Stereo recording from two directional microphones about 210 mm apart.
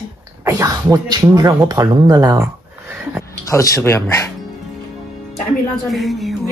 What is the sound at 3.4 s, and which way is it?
Speech, 15° left (ahead or behind).